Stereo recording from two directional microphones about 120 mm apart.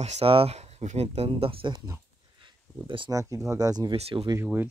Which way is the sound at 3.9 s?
55° right (ahead or behind).